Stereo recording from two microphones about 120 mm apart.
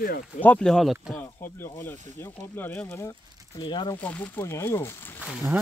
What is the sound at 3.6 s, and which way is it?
Speech, 40° left (ahead or behind).